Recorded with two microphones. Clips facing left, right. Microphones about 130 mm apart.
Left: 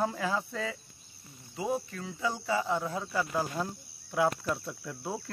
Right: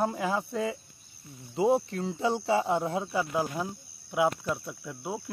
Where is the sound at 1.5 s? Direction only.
25° right (ahead or behind).